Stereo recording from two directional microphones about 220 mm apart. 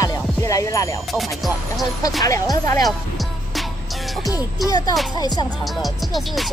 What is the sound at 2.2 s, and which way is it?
Speech, 15° left (ahead or behind).